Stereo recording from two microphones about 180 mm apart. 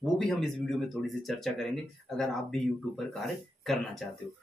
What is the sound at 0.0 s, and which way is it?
Speech, centre (ahead or behind).